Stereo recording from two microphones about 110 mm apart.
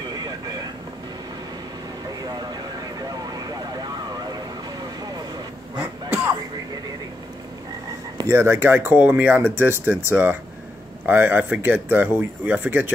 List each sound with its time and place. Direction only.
2.0 s vehicle: 35° right (ahead or behind)
5.8 s a sound: 20° right (ahead or behind)
8.2 s speech: 25° right (ahead or behind)